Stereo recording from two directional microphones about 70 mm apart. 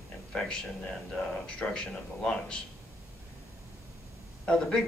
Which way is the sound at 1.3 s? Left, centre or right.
Centre.